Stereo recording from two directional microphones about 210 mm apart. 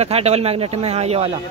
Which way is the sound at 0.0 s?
30° right (ahead or behind).